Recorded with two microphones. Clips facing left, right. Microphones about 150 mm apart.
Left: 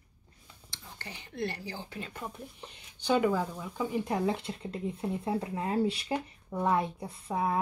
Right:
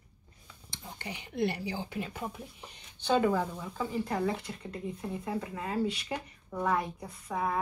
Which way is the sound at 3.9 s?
20° left (ahead or behind).